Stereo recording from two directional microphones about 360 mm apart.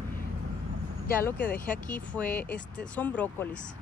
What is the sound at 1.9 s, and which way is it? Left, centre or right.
Speech, centre.